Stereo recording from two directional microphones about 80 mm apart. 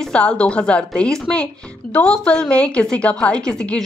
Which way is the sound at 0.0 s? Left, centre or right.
Centre.